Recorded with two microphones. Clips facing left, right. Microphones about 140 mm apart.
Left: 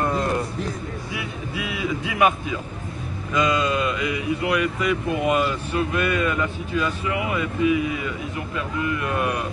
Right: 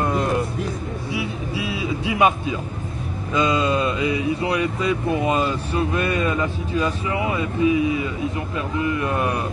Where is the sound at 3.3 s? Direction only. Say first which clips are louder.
Right 2 dB; 30° right (ahead or behind).